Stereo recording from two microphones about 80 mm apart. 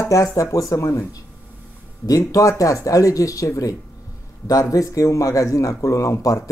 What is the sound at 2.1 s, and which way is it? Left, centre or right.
Speech, left.